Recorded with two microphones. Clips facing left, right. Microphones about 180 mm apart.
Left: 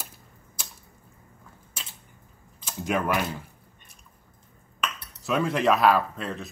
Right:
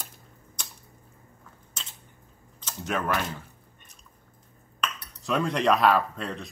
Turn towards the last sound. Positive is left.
turn(degrees=0)  # may be behind; listen again after turning